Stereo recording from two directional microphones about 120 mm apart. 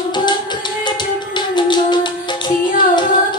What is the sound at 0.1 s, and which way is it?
Music, 40° left (ahead or behind).